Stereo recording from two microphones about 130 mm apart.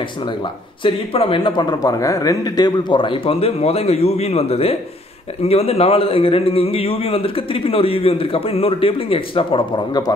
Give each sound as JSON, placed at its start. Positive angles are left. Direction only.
{"t": 0.8, "sound": "a man's voice", "side_deg": 45}